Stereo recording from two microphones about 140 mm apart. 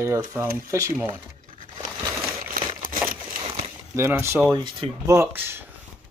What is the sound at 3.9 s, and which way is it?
Speech, 15° right (ahead or behind).